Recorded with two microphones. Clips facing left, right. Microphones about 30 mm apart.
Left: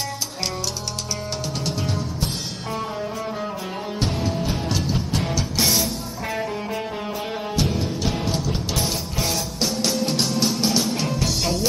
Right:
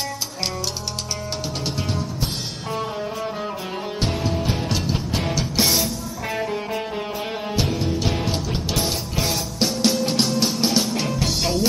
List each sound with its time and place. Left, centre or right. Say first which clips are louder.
2.7 s music: right 1 dB; centre